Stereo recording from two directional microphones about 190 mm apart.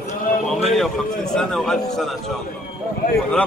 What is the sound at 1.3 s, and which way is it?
Speech, centre (ahead or behind).